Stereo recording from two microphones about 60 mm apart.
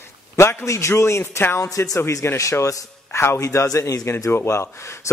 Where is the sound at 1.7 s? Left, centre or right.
Left.